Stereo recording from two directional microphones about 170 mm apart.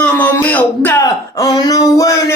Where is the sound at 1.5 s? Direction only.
20° left (ahead or behind).